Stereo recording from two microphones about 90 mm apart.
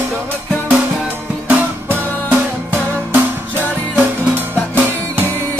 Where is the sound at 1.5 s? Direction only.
15° right (ahead or behind).